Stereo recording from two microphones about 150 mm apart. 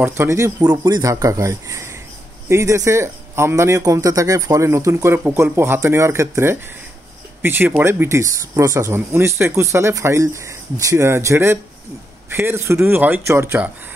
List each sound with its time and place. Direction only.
0.0 s speech: 15° right (ahead or behind)